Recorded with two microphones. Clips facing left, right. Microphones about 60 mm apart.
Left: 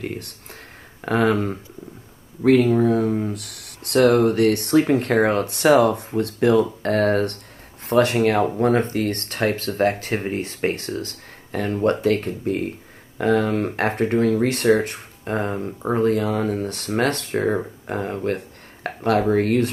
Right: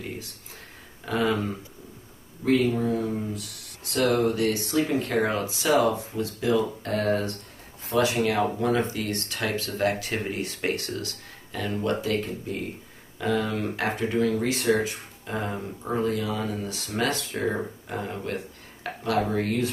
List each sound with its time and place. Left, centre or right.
0.0 s speech: left